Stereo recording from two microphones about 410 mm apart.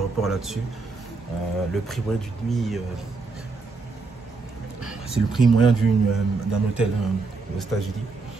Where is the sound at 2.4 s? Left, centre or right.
Centre.